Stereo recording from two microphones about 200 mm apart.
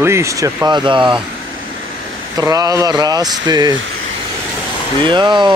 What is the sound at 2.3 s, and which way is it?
Speech, 15° right (ahead or behind).